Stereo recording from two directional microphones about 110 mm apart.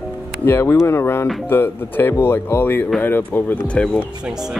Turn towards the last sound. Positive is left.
turn(degrees=-5)  # may be behind; listen again after turning